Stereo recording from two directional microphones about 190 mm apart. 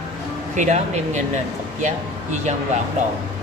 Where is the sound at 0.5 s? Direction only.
40° right (ahead or behind).